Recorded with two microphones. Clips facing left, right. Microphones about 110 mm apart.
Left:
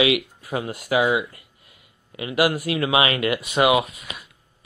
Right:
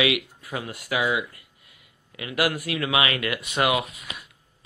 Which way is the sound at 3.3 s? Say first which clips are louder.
Left 5 dB; 15° left (ahead or behind).